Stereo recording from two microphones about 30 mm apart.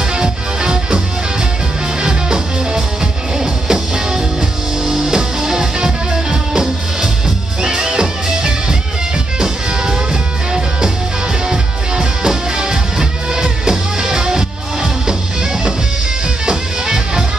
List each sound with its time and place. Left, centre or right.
0.1 s music: right
11.4 s music: right